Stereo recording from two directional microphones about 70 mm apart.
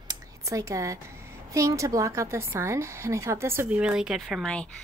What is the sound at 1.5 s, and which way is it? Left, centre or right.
A woman's voice, right.